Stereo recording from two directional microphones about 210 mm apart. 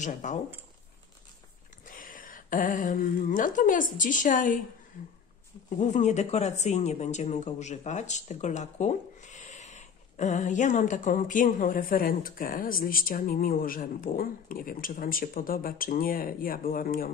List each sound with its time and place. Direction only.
0.0 s speech: 35° left (ahead or behind)
1.9 s a woman's voice: 40° left (ahead or behind)
5.8 s speech: 35° left (ahead or behind)